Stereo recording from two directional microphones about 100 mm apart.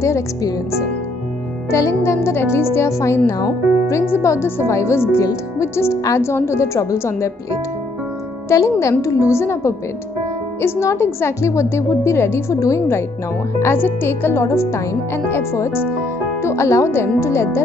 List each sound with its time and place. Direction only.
0.0 s speech: 30° left (ahead or behind)
8.5 s speech: 30° left (ahead or behind)